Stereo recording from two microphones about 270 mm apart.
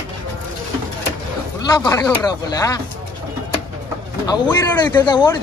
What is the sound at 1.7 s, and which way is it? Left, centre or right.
A man's voice, centre.